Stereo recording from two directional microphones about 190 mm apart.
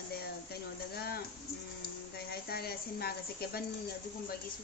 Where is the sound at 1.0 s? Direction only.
55° left (ahead or behind).